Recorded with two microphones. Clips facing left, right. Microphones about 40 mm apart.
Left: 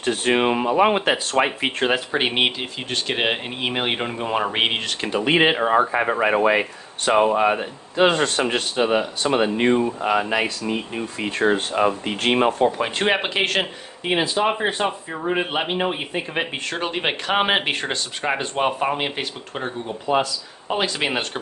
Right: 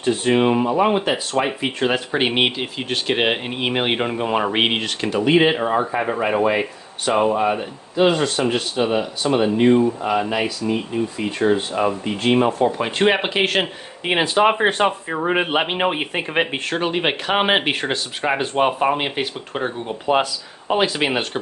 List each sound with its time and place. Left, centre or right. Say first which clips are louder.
0.0 s speech: right 3 dB; left
0.3 s speech: right 2 dB; left
1.9 s speech: right 3 dB; centre
5.0 s speech: right 2 dB; centre
5.8 s speech: left 2 dB; left
7.1 s speech: left 1 dB; centre
7.3 s speech: left 1 dB; left
11.4 s speech: right 1 dB; left
11.8 s speech: even; left
12.6 s speech: right 2 dB; centre
14.0 s speech: right 4 dB; right
16.7 s speech: right 4 dB; centre